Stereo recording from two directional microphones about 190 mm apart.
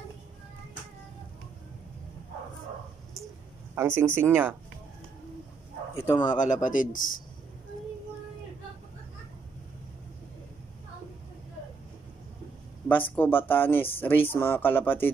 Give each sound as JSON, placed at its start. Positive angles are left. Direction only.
{"t": 3.7, "sound": "speech", "side_deg": -10}
{"t": 6.0, "sound": "speech", "side_deg": 25}
{"t": 6.3, "sound": "speech", "side_deg": 40}
{"t": 12.8, "sound": "speech", "side_deg": 10}